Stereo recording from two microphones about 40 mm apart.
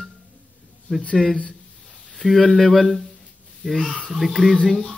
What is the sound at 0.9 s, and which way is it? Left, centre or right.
Speech, centre.